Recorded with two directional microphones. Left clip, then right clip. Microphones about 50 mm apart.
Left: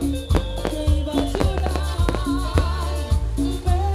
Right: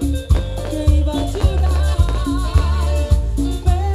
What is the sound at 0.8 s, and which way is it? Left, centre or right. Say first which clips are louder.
Music: right 1 dB; right.